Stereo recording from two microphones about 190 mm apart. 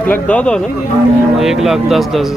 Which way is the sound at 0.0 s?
10° left (ahead or behind).